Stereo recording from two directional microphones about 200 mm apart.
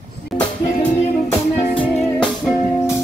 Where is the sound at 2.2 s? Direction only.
5° right (ahead or behind).